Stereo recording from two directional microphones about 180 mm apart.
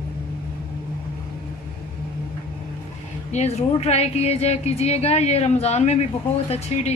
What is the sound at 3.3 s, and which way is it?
Speech, 35° left (ahead or behind).